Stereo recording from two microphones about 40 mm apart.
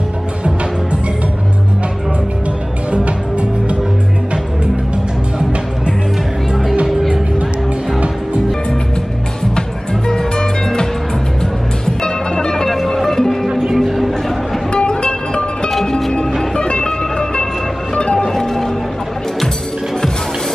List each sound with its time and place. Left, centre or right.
2.9 s music: right
6.5 s music: centre
9.6 s music: centre
12.6 s music: centre
13.5 s music: centre
13.7 s a sound: centre
14.7 s music: left
15.7 s music: centre
18.3 s music: centre